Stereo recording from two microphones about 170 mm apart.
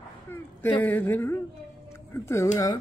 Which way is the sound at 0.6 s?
10° left (ahead or behind).